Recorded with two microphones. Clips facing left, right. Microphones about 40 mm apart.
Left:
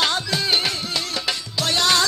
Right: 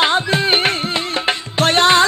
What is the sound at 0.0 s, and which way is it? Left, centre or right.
Music, right.